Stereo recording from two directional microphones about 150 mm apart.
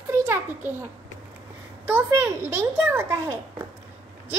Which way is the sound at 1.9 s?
15° right (ahead or behind).